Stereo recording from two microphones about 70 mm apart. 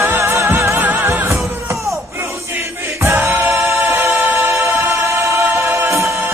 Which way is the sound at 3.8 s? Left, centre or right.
Right.